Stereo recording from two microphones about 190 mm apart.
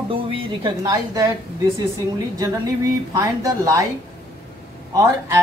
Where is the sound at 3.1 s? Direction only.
20° right (ahead or behind).